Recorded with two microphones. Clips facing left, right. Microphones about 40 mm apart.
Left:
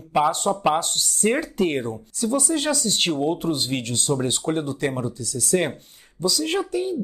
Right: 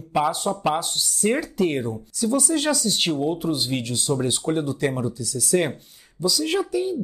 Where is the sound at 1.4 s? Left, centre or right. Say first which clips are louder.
Even; centre.